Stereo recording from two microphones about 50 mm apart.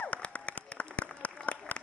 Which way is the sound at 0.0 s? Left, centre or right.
Left.